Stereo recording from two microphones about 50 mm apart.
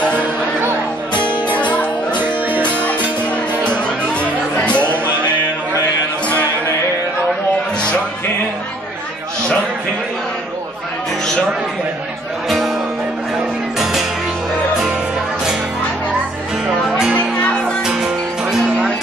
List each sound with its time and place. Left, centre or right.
1.5 s music: left
2.1 s music: right
4.1 s music: left
12.4 s music: centre
17.8 s music: centre